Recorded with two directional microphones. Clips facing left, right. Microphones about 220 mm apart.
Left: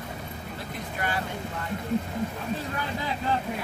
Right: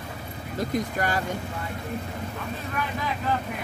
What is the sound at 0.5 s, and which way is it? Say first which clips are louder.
Speech: right 12 dB; 40° right (ahead or behind).